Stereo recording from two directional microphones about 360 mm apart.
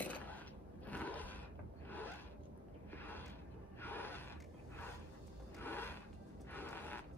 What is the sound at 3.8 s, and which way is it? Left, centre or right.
Gasp, centre.